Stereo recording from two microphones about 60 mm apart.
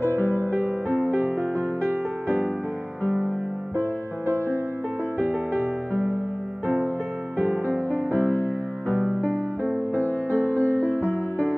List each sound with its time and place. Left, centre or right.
0.0 s music: right
5.2 s music: right
7.3 s music: right
9.0 s music: left
10.3 s music: right
11.1 s music: left